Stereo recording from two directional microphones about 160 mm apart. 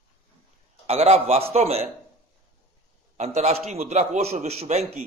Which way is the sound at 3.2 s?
45° right (ahead or behind).